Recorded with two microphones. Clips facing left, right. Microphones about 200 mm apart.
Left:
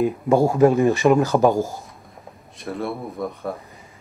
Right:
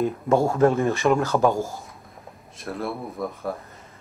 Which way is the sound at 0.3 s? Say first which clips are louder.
Left 3 dB; 15° left (ahead or behind).